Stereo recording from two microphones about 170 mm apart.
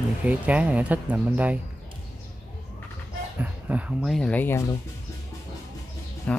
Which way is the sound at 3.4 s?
10° right (ahead or behind).